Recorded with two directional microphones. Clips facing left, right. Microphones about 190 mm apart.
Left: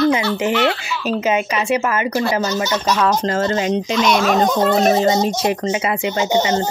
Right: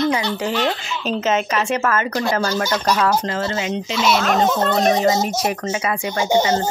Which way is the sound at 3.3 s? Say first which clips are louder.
Left 4 dB; 45° left (ahead or behind).